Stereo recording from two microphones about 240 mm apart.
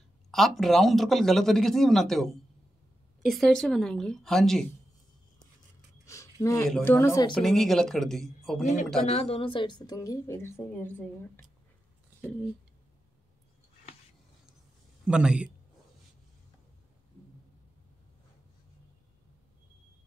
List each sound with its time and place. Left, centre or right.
0.3 s a man's voice: centre
3.3 s a man's voice: centre
6.0 s a sound: centre
6.7 s a woman's voice: centre
7.3 s a man's voice: centre
9.0 s a woman's voice: left; by 11.1 s centre
15.0 s a man's voice: centre